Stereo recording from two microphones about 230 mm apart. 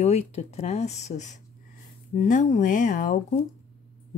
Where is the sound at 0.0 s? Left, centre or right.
Left.